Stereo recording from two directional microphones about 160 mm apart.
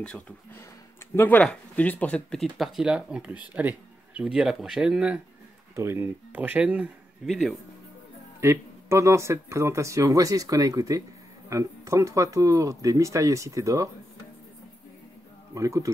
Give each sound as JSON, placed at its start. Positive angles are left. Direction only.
{"t": 1.1, "sound": "speech", "side_deg": 10}
{"t": 8.4, "sound": "speech", "side_deg": -15}
{"t": 15.5, "sound": "speech", "side_deg": -20}